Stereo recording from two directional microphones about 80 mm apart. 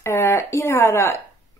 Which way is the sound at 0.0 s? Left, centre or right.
Left.